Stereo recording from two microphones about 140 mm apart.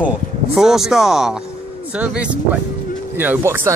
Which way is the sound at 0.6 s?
5° right (ahead or behind).